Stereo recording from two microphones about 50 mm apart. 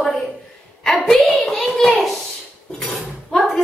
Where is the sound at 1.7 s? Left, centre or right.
Centre.